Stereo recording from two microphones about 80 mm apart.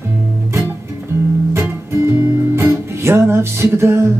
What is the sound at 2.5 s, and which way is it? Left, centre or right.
Music, right.